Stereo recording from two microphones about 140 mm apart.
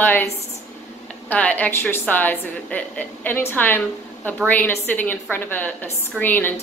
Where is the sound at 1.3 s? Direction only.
10° left (ahead or behind).